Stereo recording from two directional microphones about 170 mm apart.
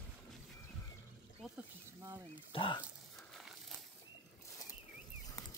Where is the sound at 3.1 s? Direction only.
5° left (ahead or behind).